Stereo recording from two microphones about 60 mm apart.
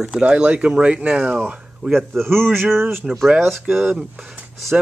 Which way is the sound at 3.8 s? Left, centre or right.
Centre.